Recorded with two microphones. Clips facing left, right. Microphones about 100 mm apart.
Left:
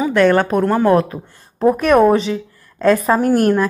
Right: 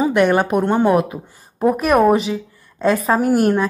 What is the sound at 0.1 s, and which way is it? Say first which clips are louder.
A woman's voice: left 2 dB; 15° right (ahead or behind).